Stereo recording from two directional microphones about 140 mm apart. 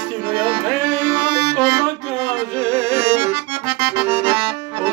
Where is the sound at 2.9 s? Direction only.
15° right (ahead or behind).